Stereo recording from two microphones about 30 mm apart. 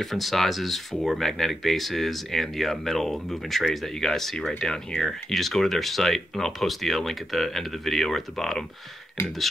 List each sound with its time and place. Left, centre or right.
0.0 s speech: centre; by 5.1 s left
5.3 s speech: centre